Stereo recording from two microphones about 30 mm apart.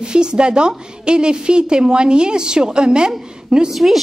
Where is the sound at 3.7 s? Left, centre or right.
Centre.